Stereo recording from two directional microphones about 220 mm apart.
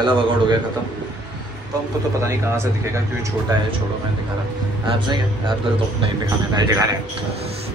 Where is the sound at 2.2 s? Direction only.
10° right (ahead or behind).